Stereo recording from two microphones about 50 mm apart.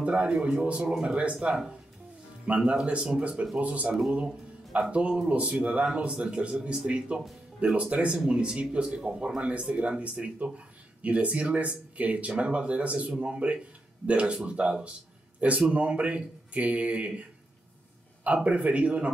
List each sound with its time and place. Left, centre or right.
0.0 s speech: right
4.9 s speech: right
18.2 s speech: right